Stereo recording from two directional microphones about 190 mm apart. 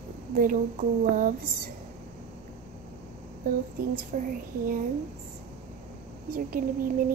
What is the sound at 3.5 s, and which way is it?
Speech, 45° right (ahead or behind).